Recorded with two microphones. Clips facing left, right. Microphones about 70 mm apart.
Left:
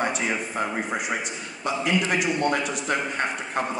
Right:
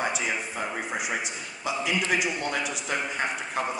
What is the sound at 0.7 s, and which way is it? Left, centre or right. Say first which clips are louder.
A man's voice: left 3 dB; left.